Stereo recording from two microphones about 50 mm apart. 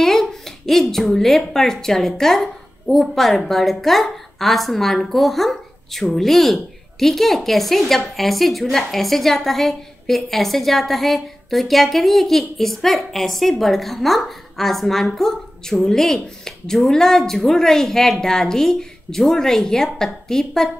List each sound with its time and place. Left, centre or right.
0.0 s a woman's voice: centre